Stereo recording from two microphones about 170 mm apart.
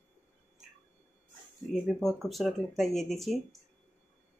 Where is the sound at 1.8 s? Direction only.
Centre (ahead or behind).